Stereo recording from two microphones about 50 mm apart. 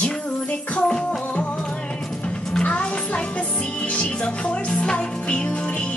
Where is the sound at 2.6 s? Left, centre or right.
Left.